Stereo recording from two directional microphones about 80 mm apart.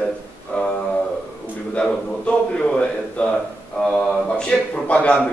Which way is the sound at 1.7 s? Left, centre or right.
Centre.